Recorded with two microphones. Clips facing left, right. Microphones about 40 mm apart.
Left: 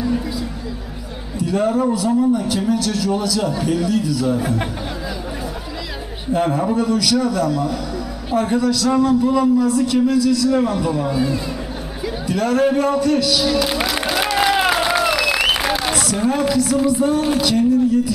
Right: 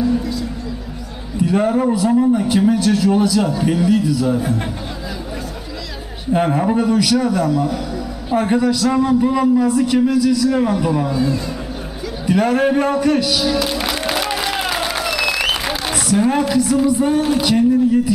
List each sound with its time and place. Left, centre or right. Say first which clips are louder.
0.0 s a sound: right 3 dB; centre
1.4 s a man's voice: right 2 dB; centre
6.3 s a man's voice: right 2 dB; centre
11.1 s a man's voice: right 1 dB; centre
12.3 s a man's voice: right 2 dB; centre
14.6 s crowd: left 4 dB; centre
15.2 s applause: left 1 dB; centre
15.9 s a man's voice: right 3 dB; centre